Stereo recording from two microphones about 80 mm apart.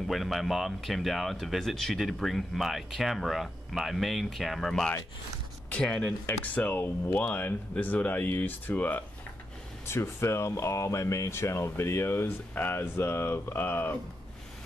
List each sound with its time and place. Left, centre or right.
0.1 s speech: centre
6.5 s speech: left
9.8 s speech: left